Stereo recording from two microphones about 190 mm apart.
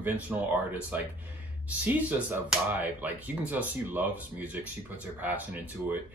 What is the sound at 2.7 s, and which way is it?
Speech, 10° right (ahead or behind).